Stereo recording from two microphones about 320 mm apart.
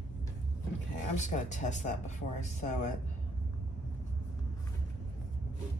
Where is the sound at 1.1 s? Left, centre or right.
Left.